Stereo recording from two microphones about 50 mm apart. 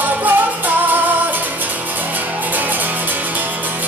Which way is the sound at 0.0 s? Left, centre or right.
Right.